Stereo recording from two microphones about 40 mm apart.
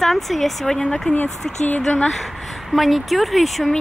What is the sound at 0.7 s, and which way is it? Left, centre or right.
Speech, centre.